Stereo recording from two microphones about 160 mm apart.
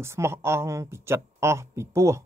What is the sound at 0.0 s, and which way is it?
Speech, 15° right (ahead or behind).